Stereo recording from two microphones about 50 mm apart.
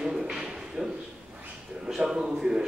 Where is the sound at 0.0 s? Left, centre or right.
Centre.